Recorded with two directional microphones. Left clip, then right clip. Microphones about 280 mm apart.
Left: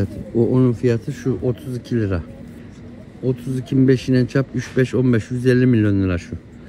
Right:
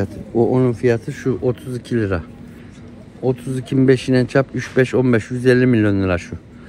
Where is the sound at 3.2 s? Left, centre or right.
Centre.